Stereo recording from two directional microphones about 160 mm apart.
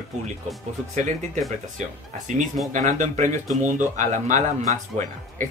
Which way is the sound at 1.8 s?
50° right (ahead or behind).